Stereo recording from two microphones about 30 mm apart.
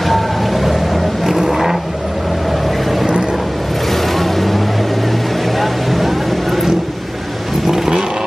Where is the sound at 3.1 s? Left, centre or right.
Right.